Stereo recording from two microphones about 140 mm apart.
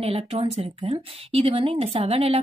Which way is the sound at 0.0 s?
45° right (ahead or behind).